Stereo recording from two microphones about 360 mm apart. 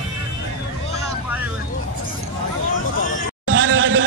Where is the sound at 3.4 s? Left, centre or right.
Right.